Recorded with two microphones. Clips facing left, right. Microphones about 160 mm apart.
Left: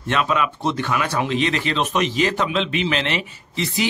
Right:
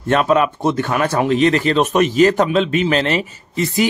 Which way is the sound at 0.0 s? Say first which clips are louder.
Right 6 dB; 45° right (ahead or behind).